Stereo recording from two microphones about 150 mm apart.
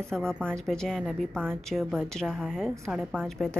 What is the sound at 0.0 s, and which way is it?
Speech, 5° left (ahead or behind).